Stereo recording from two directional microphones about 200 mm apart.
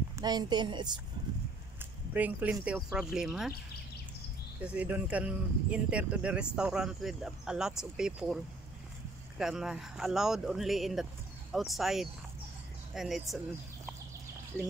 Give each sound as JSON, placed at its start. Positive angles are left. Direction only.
{"t": 0.1, "sound": "speech", "side_deg": -20}
{"t": 1.8, "sound": "speech", "side_deg": -10}
{"t": 4.6, "sound": "speech", "side_deg": -5}
{"t": 9.4, "sound": "speech", "side_deg": -5}